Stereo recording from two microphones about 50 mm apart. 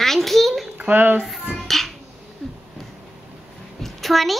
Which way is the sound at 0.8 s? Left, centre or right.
Right.